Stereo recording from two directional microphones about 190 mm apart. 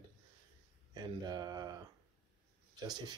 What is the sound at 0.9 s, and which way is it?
Speech, 20° right (ahead or behind).